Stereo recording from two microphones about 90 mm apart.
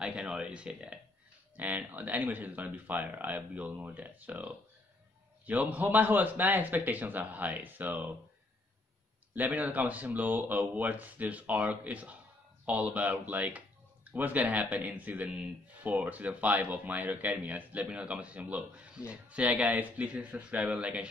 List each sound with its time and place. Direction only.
0.0 s speech: 10° right (ahead or behind)
9.3 s speech: 20° right (ahead or behind)